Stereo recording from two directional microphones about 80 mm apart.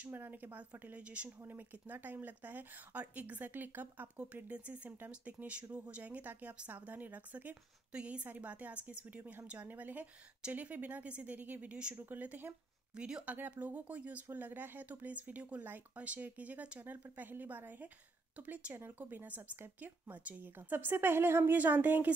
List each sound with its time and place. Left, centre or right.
0.0 s speech: right